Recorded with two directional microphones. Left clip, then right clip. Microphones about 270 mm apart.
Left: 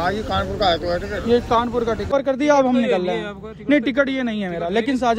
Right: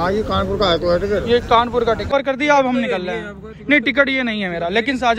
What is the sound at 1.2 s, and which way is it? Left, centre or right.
A man's voice, centre.